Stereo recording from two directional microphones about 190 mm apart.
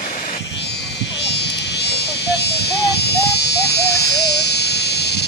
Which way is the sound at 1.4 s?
65° left (ahead or behind).